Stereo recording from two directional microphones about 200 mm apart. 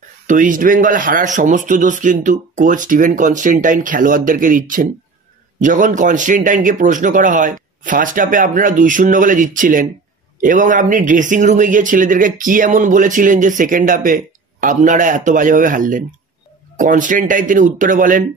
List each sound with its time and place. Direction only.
0.3 s speech: 40° right (ahead or behind)